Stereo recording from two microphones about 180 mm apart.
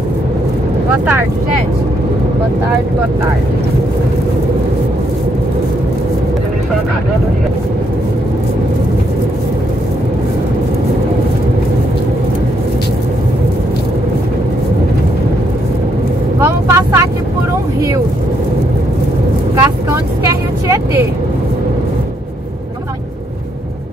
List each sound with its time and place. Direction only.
16.3 s speech: 15° right (ahead or behind)
19.6 s speech: 15° right (ahead or behind)